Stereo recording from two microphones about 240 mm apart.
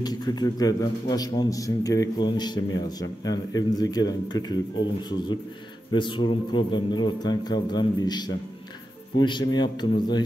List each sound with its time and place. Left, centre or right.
0.0 s speech: centre
5.9 s speech: centre